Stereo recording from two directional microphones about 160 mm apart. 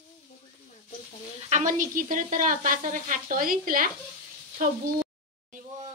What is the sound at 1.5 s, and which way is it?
Sizzle, 50° right (ahead or behind).